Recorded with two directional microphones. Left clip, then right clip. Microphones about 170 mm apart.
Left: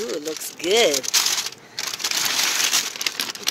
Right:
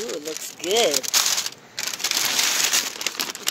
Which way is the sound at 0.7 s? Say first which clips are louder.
Left 2 dB; 5° left (ahead or behind).